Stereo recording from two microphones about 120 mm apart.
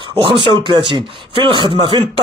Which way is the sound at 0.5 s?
40° right (ahead or behind).